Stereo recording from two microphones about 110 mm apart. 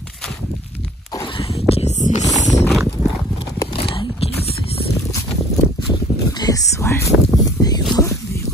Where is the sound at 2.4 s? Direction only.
90° left.